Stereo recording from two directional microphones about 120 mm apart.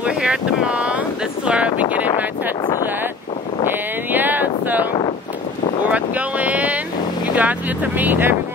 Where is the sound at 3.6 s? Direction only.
15° right (ahead or behind).